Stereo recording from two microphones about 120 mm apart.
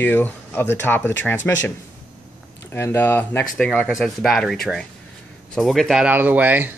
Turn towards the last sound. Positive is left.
turn(degrees=-15)  # may be behind; listen again after turning